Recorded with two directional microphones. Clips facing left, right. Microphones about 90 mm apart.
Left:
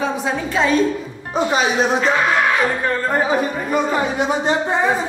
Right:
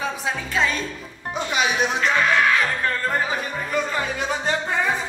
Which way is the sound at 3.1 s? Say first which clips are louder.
Left 6 dB; 20° left (ahead or behind).